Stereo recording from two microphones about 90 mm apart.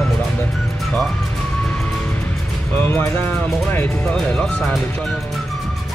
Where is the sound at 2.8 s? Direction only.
20° left (ahead or behind); by 4.8 s 5° left (ahead or behind).